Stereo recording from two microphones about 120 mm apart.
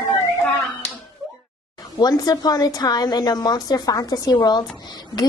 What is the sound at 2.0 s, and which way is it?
A woman's voice, 35° left (ahead or behind).